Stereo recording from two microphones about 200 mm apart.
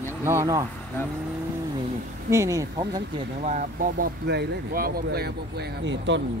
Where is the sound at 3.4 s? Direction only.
40° right (ahead or behind).